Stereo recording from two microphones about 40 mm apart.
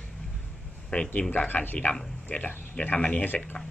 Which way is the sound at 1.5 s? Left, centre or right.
Left.